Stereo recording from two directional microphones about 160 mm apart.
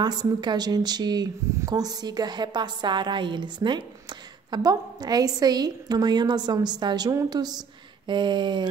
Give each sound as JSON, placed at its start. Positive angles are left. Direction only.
{"t": 0.0, "sound": "a woman's voice", "side_deg": -25}